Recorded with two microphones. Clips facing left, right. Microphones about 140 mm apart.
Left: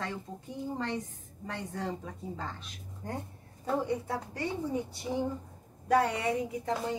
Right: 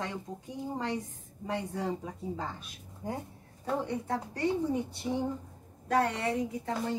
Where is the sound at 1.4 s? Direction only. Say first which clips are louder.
Right 3 dB; 15° right (ahead or behind).